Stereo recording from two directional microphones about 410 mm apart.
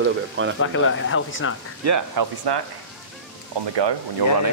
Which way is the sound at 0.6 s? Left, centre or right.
Left.